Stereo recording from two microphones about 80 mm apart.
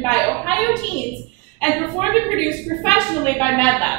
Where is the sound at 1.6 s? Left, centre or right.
Centre.